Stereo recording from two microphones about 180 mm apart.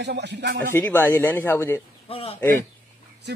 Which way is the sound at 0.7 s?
10° left (ahead or behind).